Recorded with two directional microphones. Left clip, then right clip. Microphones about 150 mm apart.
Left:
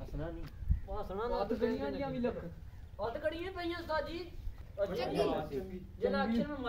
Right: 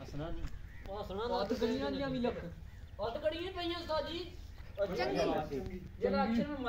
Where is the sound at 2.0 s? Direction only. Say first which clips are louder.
Even; 25° left (ahead or behind).